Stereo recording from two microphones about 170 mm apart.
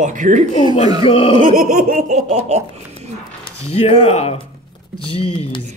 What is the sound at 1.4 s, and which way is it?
Laughter, 45° right (ahead or behind).